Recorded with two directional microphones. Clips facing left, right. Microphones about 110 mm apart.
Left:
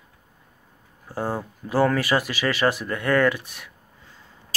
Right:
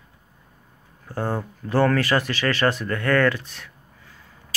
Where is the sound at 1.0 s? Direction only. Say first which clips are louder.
Right 1 dB; 10° left (ahead or behind).